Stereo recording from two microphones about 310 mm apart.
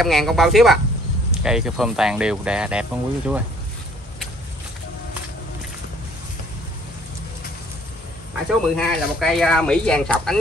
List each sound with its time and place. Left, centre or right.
0.0 s speech: centre
8.7 s speech: centre